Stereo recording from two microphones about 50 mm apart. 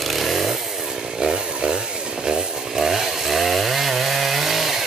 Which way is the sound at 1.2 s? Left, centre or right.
Centre.